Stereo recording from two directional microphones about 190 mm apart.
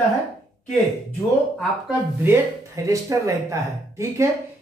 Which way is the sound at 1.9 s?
10° right (ahead or behind).